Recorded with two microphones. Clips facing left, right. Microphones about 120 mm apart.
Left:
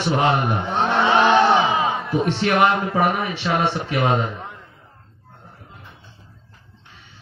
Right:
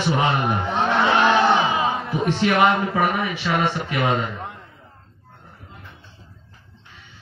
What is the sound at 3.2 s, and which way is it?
Speech, 25° left (ahead or behind).